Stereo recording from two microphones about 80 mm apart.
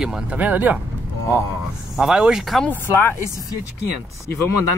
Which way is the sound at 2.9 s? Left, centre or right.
Left.